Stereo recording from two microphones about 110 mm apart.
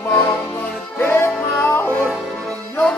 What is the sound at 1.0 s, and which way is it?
Music, 20° left (ahead or behind).